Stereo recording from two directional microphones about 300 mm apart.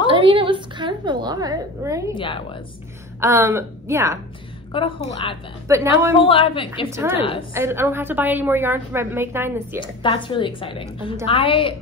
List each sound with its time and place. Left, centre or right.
0.1 s a sound: centre
2.1 s a woman's voice: centre
3.2 s a woman's voice: centre
4.7 s a woman's voice: centre
5.7 s a woman's voice: centre
6.1 s a woman's voice: centre
6.9 s a woman's voice: centre
9.8 s a woman's voice: centre